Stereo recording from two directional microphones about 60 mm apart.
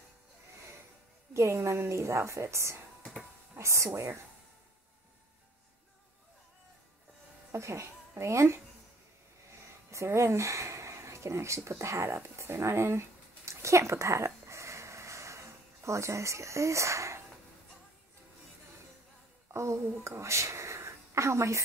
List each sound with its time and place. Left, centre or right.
1.3 s a woman's voice: right
7.5 s speech: right
9.8 s speech: right
13.5 s a sound: right
19.5 s a woman's voice: right
20.0 s a sound: right